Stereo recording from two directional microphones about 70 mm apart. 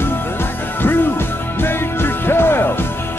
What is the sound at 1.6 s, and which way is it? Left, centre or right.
Music, left.